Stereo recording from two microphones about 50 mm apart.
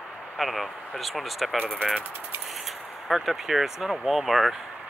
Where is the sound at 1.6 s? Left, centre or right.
Centre.